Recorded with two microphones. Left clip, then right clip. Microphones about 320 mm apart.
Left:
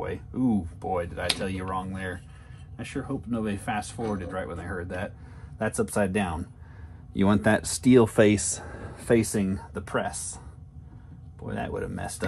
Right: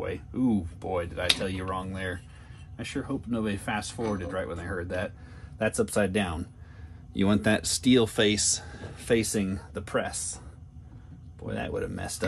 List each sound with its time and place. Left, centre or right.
0.0 s a sound: centre
0.4 s speech: centre
7.8 s speech: centre
11.4 s speech: centre